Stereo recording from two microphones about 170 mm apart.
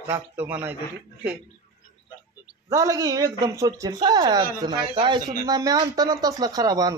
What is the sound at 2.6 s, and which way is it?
Speech, 20° right (ahead or behind).